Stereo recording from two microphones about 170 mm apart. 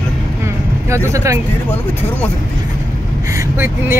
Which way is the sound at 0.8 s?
15° right (ahead or behind).